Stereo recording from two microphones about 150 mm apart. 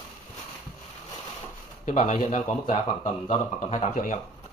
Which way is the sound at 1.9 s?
50° left (ahead or behind).